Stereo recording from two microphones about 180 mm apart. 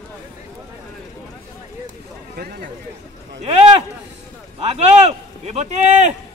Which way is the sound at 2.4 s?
55° right (ahead or behind).